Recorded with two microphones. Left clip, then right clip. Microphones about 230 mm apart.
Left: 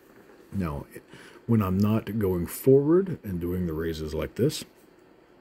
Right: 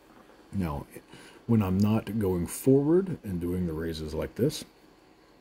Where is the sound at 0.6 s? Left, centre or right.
Centre.